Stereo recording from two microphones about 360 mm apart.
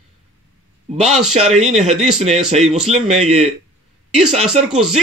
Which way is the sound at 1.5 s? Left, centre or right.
Centre.